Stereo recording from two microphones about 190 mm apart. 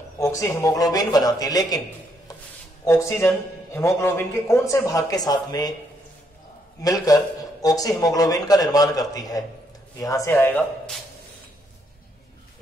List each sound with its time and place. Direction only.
0.2 s a man's voice: 15° left (ahead or behind)
2.8 s a man's voice: 15° left (ahead or behind)
6.8 s a man's voice: 20° left (ahead or behind)